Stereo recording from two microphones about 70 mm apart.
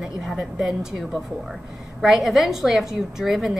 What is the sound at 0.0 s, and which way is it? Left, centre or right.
A woman's voice, centre.